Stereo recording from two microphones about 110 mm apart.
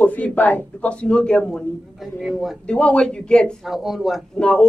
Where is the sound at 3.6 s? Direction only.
5° right (ahead or behind).